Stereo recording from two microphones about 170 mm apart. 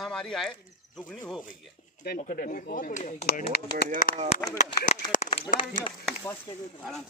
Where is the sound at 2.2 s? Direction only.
55° left (ahead or behind).